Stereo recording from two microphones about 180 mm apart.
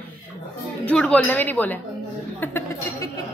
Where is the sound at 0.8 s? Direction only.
5° left (ahead or behind).